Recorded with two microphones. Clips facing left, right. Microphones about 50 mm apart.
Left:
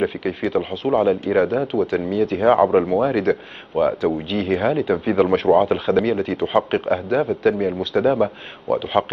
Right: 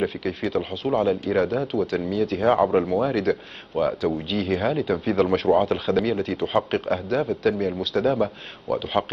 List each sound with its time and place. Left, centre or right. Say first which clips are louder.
0.0 s speech: left 4 dB; centre